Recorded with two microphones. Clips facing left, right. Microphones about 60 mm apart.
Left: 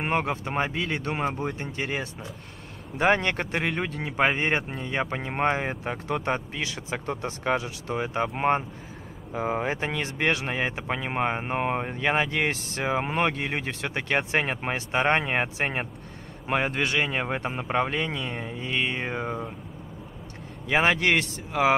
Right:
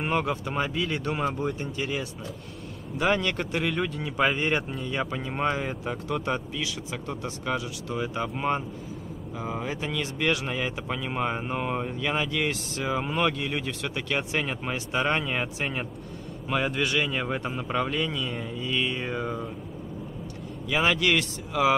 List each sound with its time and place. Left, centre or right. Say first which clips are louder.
0.0 s speech: even; left
20.7 s speech: left 2 dB; left